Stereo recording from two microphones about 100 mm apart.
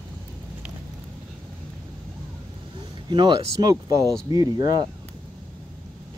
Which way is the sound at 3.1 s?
45° right (ahead or behind).